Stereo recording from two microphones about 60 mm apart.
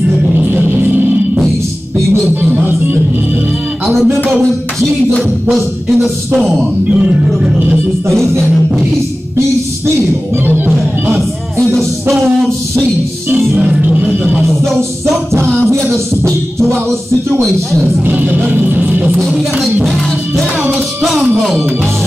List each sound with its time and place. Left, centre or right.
0.3 s music: right
3.8 s music: centre
6.3 s speech: centre
8.1 s music: centre
10.4 s music: right
11.6 s music: centre
13.9 s music: right
14.5 s music: centre
16.5 s music: centre
18.0 s music: right
19.1 s music: centre
21.0 s music: centre